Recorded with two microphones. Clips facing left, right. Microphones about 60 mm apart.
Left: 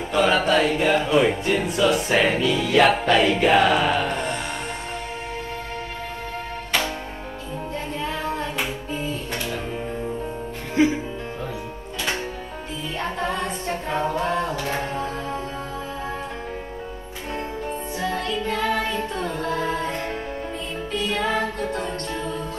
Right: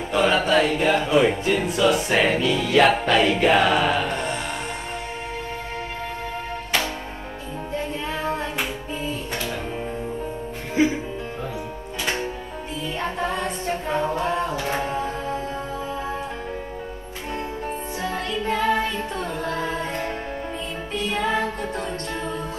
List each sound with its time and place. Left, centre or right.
0.1 s music: centre
8.0 s female singing: right
13.8 s music: centre
18.0 s music: right
18.9 s music: centre